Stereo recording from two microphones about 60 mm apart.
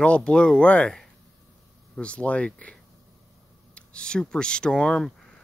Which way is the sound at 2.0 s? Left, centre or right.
Left.